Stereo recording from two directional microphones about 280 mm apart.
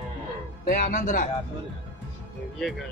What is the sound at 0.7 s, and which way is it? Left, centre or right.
Speech, left.